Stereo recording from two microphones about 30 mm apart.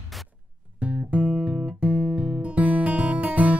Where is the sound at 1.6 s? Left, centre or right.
Right.